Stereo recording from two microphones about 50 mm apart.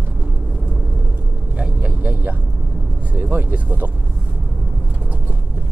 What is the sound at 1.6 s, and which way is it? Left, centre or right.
Vehicle, right.